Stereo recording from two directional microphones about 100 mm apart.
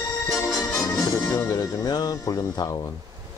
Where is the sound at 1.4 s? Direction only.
30° left (ahead or behind).